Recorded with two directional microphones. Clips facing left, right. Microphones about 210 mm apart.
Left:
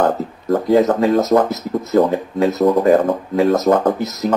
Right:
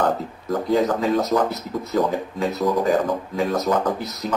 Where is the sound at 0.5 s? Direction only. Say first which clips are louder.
Left 6 dB; 45° left (ahead or behind).